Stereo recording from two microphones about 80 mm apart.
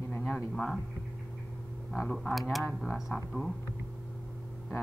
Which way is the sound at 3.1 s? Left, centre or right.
Left.